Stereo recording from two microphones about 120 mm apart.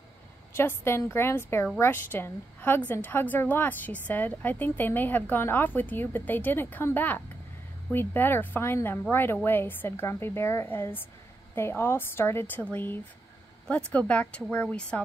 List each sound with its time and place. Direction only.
0.6 s a woman's voice: 20° left (ahead or behind)